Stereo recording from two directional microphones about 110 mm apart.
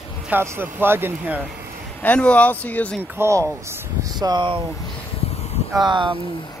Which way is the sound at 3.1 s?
25° right (ahead or behind).